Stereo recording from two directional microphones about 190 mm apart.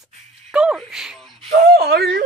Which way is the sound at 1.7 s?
60° right (ahead or behind).